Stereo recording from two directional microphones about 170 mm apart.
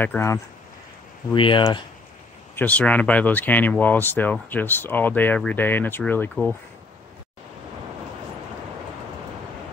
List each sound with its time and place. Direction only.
0.0 s speech: 15° left (ahead or behind)
1.3 s speech: 30° left (ahead or behind)
2.5 s speech: 10° left (ahead or behind)